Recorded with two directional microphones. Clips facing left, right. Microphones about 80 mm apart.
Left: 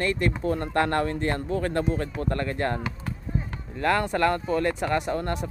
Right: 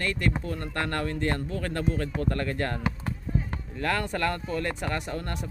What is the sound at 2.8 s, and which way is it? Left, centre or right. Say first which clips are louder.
Basketball bounce: right 2 dB; right.